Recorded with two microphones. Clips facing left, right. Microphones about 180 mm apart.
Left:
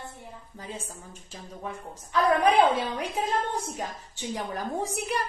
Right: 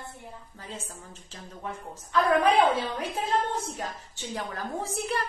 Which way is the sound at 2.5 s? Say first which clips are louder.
Left 1 dB; 15° left (ahead or behind).